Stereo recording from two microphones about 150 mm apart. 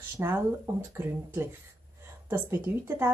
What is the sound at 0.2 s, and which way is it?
Speech, 15° right (ahead or behind).